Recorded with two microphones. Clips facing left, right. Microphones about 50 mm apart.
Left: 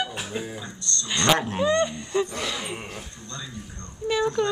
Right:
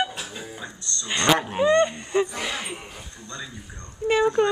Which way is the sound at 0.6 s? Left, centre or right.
Centre.